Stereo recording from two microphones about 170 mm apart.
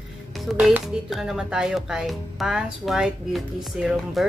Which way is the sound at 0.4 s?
Centre (ahead or behind).